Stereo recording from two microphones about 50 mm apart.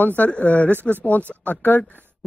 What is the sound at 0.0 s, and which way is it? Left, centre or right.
Speech, left.